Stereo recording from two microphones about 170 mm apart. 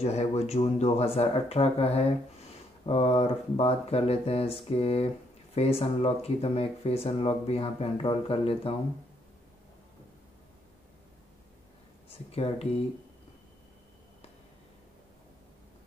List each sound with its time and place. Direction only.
0.0 s speech: 40° left (ahead or behind)
12.3 s speech: 35° left (ahead or behind)